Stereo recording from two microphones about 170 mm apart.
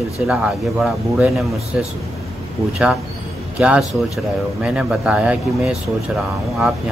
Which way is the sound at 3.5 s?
5° right (ahead or behind).